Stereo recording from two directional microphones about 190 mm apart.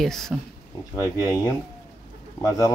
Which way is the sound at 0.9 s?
15° left (ahead or behind).